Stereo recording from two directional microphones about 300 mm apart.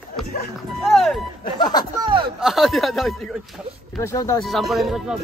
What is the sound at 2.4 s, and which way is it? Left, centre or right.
Speech, centre.